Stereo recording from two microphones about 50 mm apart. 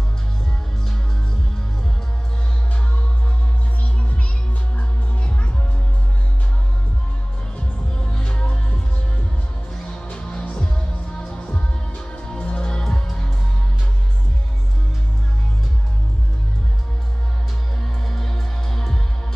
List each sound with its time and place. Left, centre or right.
4.7 s music: left
7.5 s music: centre
9.8 s music: centre
18.0 s music: centre